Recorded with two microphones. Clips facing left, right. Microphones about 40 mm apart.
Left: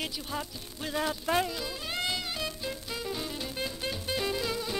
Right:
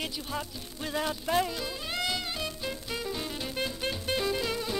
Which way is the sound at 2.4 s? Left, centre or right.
Centre.